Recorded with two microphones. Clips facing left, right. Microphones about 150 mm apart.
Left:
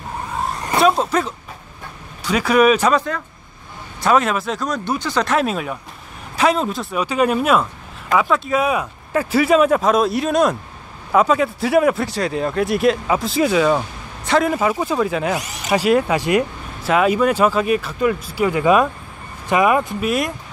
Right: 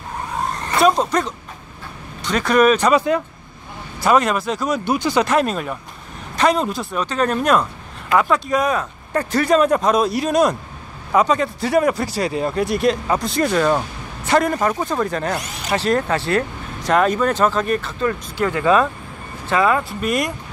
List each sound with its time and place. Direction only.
0.7 s speech: centre (ahead or behind)
2.9 s speech: 10° right (ahead or behind)
4.0 s a man's voice: centre (ahead or behind)
5.3 s a man's voice: centre (ahead or behind); by 20.0 s 15° left (ahead or behind)
20.0 s a man's voice: centre (ahead or behind)